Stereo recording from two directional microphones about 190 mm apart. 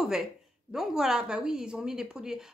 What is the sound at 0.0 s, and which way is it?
A woman's voice, 5° right (ahead or behind).